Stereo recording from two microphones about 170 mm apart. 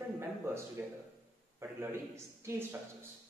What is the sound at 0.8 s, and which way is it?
A man's voice, 10° right (ahead or behind).